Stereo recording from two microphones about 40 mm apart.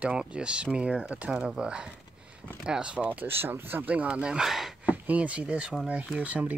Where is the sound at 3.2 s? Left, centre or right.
Right.